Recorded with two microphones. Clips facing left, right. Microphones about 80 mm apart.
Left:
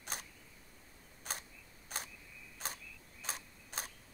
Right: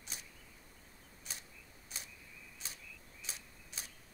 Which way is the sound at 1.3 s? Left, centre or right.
Left.